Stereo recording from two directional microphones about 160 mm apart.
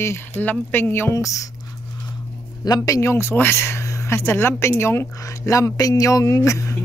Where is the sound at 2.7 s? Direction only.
20° left (ahead or behind).